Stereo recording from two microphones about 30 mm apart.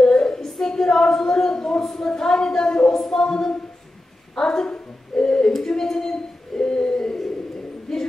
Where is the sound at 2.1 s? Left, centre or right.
Left.